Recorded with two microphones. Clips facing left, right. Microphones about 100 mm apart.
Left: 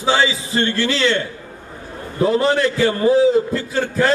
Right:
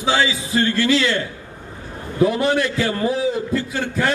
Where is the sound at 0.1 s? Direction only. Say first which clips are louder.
Left 2 dB; 30° left (ahead or behind).